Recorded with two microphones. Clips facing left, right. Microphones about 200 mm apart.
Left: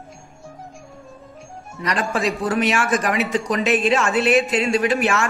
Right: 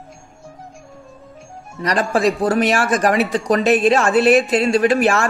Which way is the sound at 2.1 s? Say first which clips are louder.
Right 6 dB; 35° right (ahead or behind).